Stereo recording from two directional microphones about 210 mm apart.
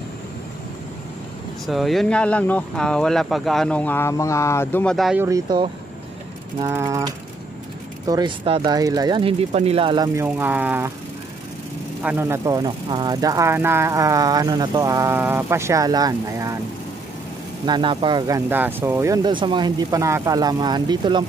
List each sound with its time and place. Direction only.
1.7 s speech: centre (ahead or behind)
5.2 s speech: 15° right (ahead or behind)
12.0 s speech: 10° right (ahead or behind)
17.6 s speech: 20° right (ahead or behind)